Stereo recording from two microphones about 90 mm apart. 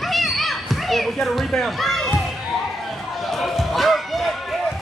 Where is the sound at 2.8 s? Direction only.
Centre (ahead or behind).